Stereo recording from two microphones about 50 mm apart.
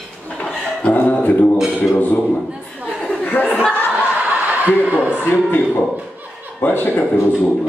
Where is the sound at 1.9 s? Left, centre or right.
Left.